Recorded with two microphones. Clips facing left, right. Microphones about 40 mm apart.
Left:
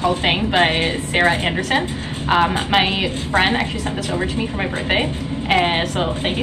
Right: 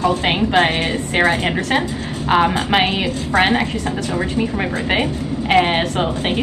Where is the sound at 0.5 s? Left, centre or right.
Left.